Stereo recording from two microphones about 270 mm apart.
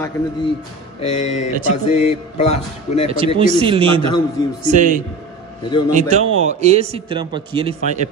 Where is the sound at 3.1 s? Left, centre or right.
Centre.